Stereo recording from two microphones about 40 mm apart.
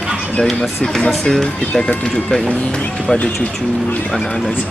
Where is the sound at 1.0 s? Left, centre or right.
Centre.